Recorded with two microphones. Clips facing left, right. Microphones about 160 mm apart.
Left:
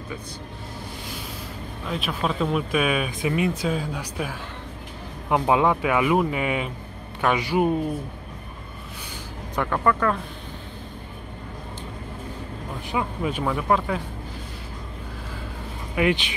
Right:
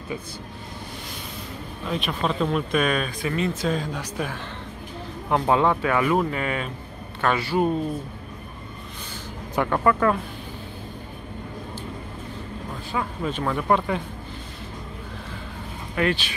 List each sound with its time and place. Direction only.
1.9 s speech: centre (ahead or behind)
3.1 s speech: 20° left (ahead or behind)
9.6 s speech: 5° right (ahead or behind)
12.9 s speech: 10° left (ahead or behind)
15.9 s speech: 15° left (ahead or behind)